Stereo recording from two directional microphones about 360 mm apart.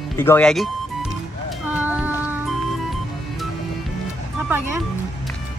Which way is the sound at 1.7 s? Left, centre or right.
Centre.